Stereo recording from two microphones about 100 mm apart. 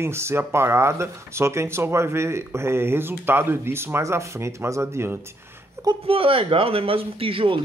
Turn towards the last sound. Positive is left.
turn(degrees=-65)  # may be behind; listen again after turning